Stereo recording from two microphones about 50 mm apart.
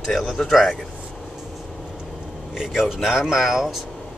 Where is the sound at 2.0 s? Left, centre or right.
Centre.